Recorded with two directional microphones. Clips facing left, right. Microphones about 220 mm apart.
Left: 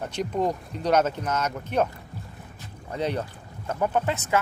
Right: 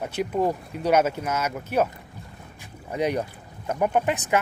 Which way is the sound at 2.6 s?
10° right (ahead or behind).